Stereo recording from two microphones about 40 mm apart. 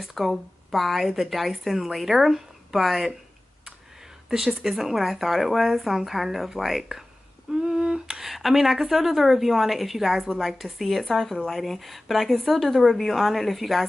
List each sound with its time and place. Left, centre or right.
0.0 s speech: centre
4.3 s speech: centre
7.5 s humming: centre
8.3 s speech: centre